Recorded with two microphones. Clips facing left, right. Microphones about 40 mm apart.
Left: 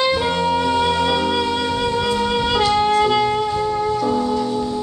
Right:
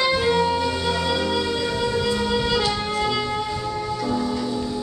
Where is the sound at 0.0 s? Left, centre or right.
Left.